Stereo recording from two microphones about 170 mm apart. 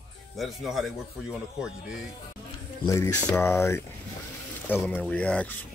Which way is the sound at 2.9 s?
20° left (ahead or behind).